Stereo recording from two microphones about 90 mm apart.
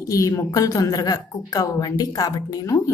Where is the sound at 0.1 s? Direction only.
35° left (ahead or behind).